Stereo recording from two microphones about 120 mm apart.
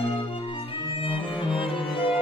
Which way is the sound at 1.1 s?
45° left (ahead or behind).